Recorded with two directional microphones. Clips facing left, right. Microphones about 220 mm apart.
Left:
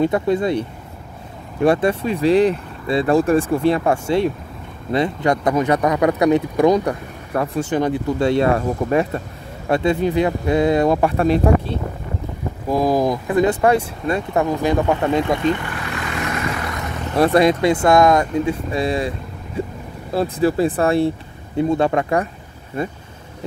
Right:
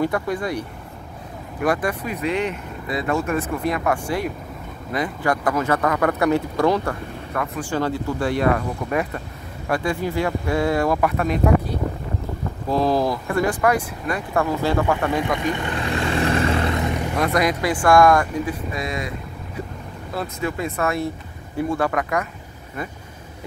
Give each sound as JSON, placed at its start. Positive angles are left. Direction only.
{"t": 0.0, "sound": "speech", "side_deg": 25}
{"t": 7.3, "sound": "speech", "side_deg": 30}
{"t": 7.7, "sound": "speech", "side_deg": 20}
{"t": 12.6, "sound": "speech", "side_deg": 15}
{"t": 15.5, "sound": "vehicle", "side_deg": -25}
{"t": 17.2, "sound": "speech", "side_deg": 30}